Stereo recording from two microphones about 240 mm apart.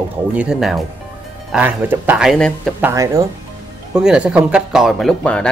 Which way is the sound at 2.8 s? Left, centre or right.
Centre.